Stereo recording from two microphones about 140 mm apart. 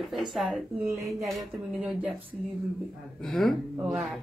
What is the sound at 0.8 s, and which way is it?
Speech, 20° right (ahead or behind).